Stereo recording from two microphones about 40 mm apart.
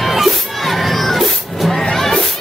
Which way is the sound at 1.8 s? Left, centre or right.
Centre.